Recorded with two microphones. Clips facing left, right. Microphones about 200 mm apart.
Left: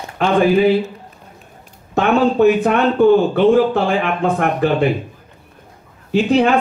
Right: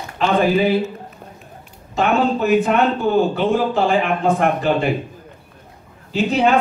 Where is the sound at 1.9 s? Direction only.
55° left (ahead or behind).